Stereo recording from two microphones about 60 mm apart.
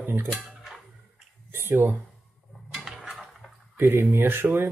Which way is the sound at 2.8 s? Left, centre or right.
Centre.